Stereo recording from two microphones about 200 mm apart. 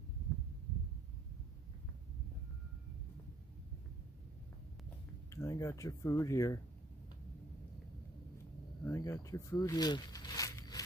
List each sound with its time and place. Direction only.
5.3 s speech: 15° left (ahead or behind)
8.8 s zipper: 15° left (ahead or behind)